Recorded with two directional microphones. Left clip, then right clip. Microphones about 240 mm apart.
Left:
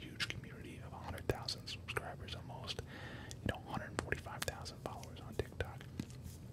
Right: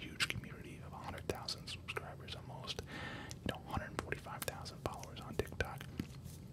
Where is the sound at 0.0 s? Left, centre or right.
Centre.